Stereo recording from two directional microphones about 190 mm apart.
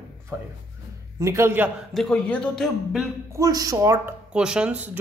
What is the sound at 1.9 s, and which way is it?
Speech, 5° left (ahead or behind).